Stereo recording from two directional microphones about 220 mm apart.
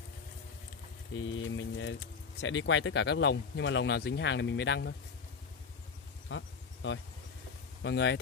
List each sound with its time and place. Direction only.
1.2 s mantra: 60° left (ahead or behind)
2.4 s speech: 60° left (ahead or behind)
6.2 s a sound: 60° left (ahead or behind)
7.8 s speech: 50° left (ahead or behind)